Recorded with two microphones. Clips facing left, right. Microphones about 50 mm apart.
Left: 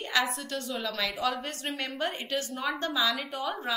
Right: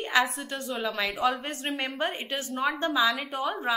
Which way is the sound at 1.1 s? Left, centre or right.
Centre.